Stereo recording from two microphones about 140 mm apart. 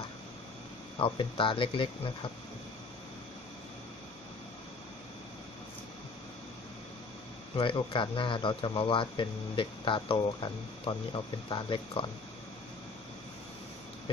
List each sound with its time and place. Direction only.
0.9 s speech: 40° left (ahead or behind)
7.5 s speech: 35° left (ahead or behind)